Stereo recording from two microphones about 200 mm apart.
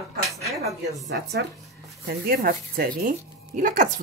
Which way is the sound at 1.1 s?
60° right (ahead or behind).